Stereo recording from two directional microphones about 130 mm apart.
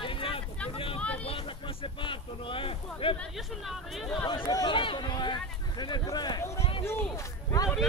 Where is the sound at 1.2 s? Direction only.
45° left (ahead or behind).